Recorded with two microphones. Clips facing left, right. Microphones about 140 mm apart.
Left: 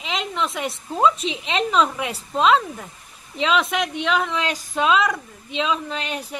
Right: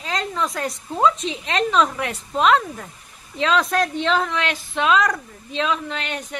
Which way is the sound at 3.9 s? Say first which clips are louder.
Right 1 dB; 10° left (ahead or behind).